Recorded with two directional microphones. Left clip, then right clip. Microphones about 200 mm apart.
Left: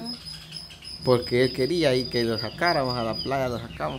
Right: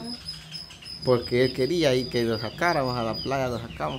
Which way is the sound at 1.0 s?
5° left (ahead or behind).